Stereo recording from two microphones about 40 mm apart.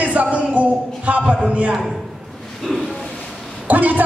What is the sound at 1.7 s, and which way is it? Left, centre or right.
Speech, centre.